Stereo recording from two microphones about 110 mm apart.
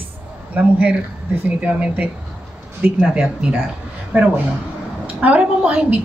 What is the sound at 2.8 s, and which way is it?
Speech, 20° right (ahead or behind).